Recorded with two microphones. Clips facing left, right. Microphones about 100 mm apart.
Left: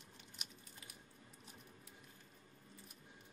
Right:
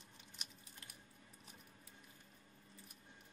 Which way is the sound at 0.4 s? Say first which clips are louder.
Even; centre (ahead or behind).